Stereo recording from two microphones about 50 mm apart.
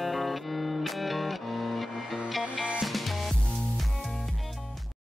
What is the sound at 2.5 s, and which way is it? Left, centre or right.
Music, right.